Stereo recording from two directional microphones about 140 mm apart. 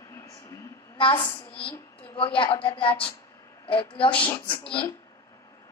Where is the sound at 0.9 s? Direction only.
35° left (ahead or behind).